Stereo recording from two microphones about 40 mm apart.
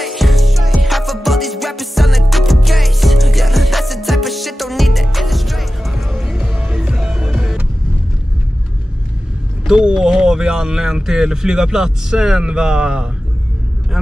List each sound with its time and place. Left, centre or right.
0.0 s music: centre
6.4 s music: centre
7.0 s music: centre
9.8 s speech: right